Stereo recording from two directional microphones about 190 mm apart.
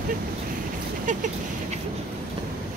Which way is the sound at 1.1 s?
40° right (ahead or behind).